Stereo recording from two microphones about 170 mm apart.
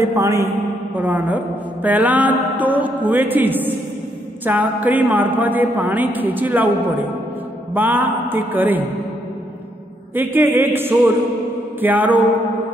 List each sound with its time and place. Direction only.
0.0 s a man's voice: 20° right (ahead or behind)
7.7 s a man's voice: 10° right (ahead or behind)
10.1 s a man's voice: 10° right (ahead or behind)